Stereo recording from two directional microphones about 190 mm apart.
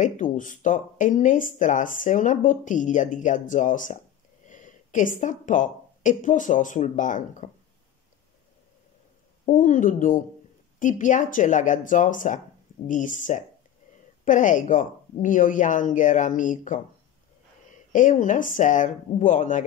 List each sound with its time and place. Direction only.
0.0 s speech: 40° left (ahead or behind)
9.5 s speech: 45° left (ahead or behind)
17.9 s speech: 40° left (ahead or behind)